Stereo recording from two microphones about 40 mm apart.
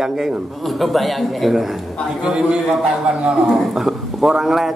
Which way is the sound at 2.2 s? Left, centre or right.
Centre.